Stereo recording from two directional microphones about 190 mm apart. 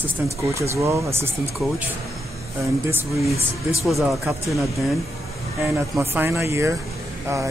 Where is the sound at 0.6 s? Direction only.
15° right (ahead or behind).